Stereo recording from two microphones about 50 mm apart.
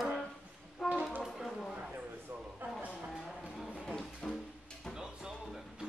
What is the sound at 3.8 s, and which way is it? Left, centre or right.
Music, centre.